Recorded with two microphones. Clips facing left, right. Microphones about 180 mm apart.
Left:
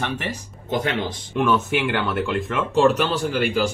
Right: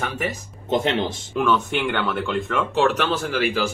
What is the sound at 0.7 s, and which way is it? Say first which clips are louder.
Speech: right 2 dB; 25° right (ahead or behind).